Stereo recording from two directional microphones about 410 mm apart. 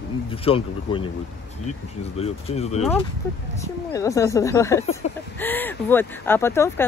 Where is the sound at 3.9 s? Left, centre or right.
Centre.